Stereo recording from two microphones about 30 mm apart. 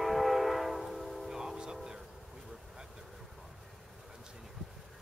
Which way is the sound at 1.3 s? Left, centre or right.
Centre.